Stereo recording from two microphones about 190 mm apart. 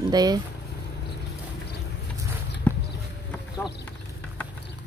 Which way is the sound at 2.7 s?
10° left (ahead or behind).